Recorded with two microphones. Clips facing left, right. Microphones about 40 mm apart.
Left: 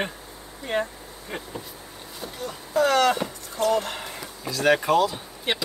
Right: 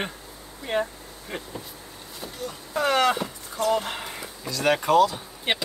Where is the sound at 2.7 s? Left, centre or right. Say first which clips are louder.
Left 2 dB; centre.